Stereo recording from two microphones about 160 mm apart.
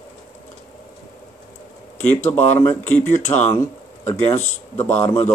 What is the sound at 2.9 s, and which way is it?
Speech, 10° left (ahead or behind).